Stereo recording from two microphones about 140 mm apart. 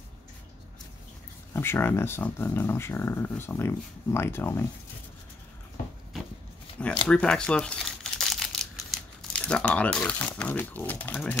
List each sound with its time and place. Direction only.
1.5 s speech: 15° left (ahead or behind)
7.1 s speech: 5° left (ahead or behind)